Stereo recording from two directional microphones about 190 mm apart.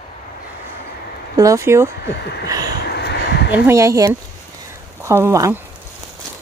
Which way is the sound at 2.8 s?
60° left (ahead or behind).